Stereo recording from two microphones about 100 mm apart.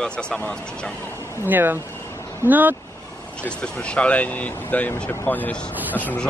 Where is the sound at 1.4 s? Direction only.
20° right (ahead or behind).